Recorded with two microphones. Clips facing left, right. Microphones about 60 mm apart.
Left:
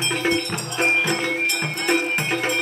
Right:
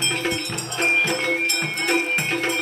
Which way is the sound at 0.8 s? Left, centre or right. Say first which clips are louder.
Even; centre.